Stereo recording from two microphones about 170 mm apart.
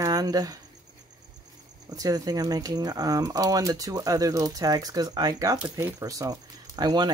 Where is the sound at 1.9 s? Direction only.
20° right (ahead or behind).